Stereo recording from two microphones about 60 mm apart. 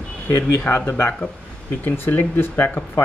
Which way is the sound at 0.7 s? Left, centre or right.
Left.